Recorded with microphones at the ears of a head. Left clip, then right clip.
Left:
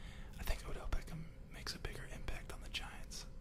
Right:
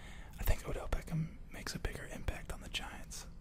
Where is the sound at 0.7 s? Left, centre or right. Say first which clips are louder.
Right 7 dB; right.